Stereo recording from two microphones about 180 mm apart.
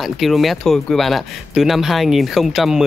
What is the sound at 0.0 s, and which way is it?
Speech, centre (ahead or behind).